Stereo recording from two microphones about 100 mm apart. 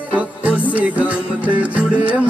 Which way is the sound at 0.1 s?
15° right (ahead or behind).